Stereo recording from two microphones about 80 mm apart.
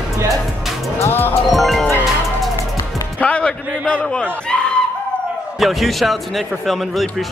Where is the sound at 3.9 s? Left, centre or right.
Centre.